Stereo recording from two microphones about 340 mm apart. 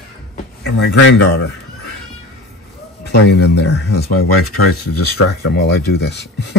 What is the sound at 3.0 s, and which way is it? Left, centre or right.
Speech, left.